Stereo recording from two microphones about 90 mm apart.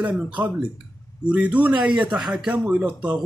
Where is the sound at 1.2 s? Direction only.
15° right (ahead or behind).